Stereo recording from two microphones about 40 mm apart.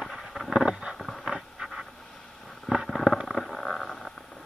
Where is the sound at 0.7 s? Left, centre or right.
Right.